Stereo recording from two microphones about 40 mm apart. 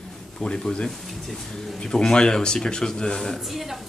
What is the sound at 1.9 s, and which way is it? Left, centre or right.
Speech, centre.